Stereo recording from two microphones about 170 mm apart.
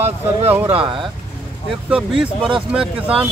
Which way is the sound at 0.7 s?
30° right (ahead or behind).